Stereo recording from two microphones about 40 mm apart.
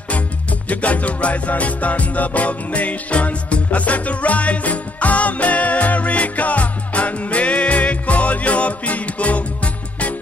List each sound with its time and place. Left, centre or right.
0.7 s music: left